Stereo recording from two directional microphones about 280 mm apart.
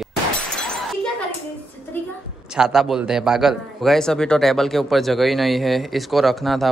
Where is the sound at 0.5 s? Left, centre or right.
Centre.